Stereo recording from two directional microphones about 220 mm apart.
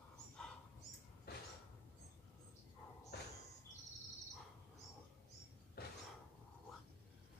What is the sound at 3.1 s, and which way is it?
Insect, 45° left (ahead or behind).